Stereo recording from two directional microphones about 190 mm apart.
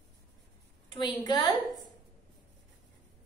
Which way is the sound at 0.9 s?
25° left (ahead or behind).